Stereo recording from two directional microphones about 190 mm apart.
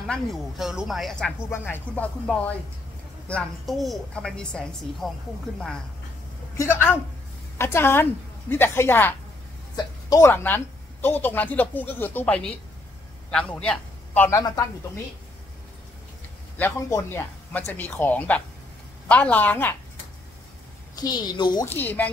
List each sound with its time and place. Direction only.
0.0 s a woman's voice: centre (ahead or behind)
1.5 s a woman's voice: 10° left (ahead or behind)
6.5 s a woman's voice: 15° left (ahead or behind)
16.5 s a woman's voice: 10° left (ahead or behind)
20.9 s a woman's voice: 20° left (ahead or behind)
21.6 s a woman's voice: 10° left (ahead or behind)